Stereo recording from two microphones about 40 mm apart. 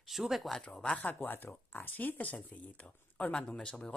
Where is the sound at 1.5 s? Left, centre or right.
Left; by 3.7 s centre.